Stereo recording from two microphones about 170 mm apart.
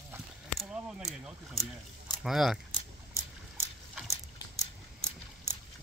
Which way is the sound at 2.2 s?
Centre (ahead or behind).